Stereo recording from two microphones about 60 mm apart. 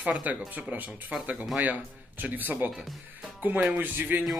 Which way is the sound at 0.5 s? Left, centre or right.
Right.